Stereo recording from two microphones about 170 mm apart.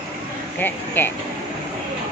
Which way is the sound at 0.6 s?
10° left (ahead or behind).